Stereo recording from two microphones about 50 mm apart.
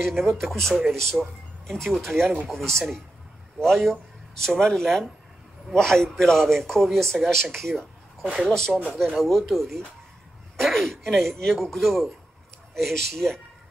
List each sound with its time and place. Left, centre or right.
0.0 s a man's voice: centre
8.2 s speech: centre
8.5 s a man's voice: centre